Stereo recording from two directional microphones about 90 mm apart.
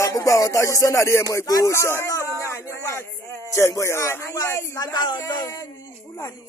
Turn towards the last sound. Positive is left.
turn(degrees=50)  # may be behind; listen again after turning